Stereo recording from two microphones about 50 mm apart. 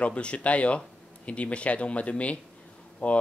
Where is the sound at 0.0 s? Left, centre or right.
Left.